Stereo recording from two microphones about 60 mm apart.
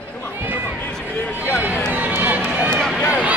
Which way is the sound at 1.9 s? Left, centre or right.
Right.